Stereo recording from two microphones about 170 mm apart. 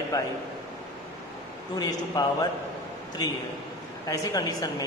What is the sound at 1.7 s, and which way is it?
Speech, 20° left (ahead or behind).